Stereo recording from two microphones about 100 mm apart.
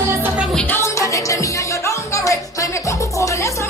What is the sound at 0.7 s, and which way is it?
Music, 30° left (ahead or behind).